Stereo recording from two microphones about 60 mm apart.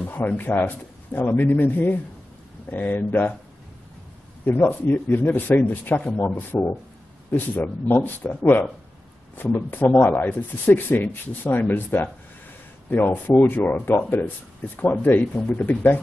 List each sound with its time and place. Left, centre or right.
0.0 s a sound: left
0.6 s speech: left
4.6 s speech: left